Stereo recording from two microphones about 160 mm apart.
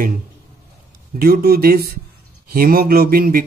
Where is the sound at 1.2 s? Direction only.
65° right (ahead or behind).